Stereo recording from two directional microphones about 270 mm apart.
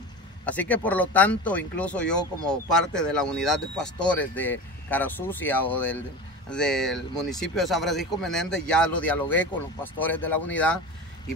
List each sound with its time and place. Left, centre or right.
0.5 s speech: centre